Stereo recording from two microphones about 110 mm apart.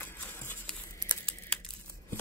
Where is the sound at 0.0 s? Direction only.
20° left (ahead or behind).